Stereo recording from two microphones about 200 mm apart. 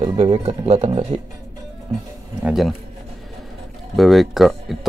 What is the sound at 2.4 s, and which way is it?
Speech, centre (ahead or behind).